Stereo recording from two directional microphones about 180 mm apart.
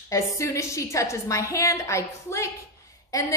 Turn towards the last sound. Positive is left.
turn(degrees=20)  # may be behind; listen again after turning